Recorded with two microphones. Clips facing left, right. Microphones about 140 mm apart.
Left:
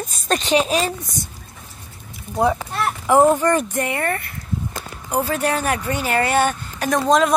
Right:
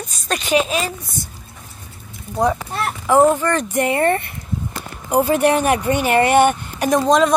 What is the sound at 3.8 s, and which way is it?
Speech, 30° right (ahead or behind).